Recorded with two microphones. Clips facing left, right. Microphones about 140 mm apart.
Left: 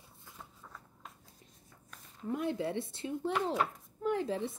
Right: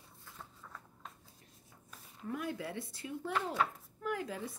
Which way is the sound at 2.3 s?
25° left (ahead or behind).